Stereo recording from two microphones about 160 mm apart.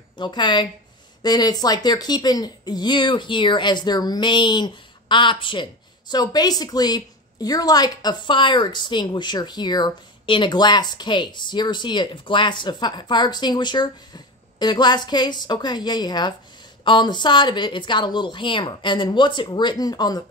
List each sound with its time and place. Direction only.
0.2 s speech: 30° left (ahead or behind)